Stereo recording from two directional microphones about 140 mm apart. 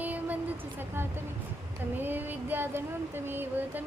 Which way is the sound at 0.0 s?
10° right (ahead or behind).